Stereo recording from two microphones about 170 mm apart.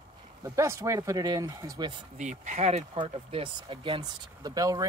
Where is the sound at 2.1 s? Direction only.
45° right (ahead or behind).